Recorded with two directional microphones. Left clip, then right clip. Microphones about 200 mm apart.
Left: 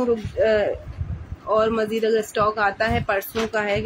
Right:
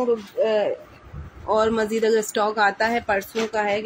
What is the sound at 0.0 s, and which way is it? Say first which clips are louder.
Speech: left 1 dB; 20° left (ahead or behind).